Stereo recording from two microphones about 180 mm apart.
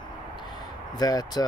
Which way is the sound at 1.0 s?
20° left (ahead or behind).